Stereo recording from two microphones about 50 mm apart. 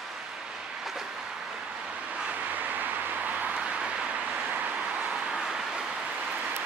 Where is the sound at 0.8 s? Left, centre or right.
Centre.